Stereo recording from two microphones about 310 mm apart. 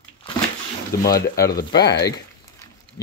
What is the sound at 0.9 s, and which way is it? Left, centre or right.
Speech, left.